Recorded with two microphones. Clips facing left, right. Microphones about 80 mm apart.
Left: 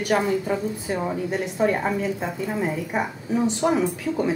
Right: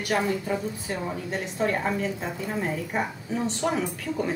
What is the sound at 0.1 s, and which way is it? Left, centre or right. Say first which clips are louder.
A woman's voice: left 3 dB; centre.